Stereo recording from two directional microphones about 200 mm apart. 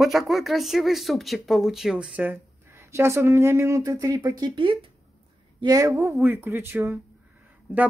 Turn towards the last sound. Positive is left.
turn(degrees=-10)  # may be behind; listen again after turning